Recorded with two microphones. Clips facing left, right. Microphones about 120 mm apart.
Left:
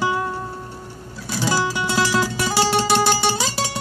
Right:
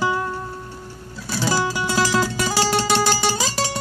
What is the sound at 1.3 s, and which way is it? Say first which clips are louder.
Music: even; 15° left (ahead or behind).